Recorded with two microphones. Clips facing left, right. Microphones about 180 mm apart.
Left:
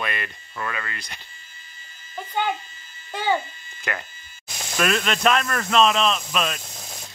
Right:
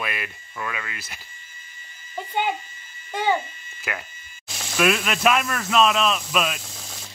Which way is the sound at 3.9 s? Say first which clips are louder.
Left 2 dB; 5° right (ahead or behind).